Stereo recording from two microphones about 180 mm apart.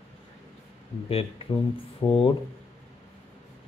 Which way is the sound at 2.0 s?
25° left (ahead or behind).